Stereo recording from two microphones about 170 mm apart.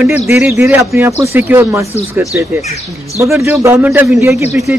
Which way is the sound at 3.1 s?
15° right (ahead or behind).